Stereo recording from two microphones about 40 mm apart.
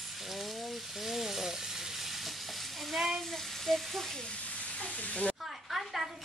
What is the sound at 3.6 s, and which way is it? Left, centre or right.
Speech, centre.